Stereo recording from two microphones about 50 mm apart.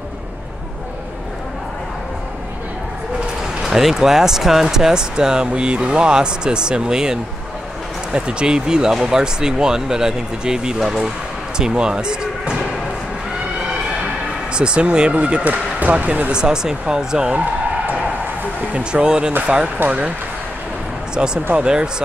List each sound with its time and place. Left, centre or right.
3.6 s speech: centre
14.5 s speech: centre
16.3 s speech: centre
18.7 s speech: right
21.1 s speech: centre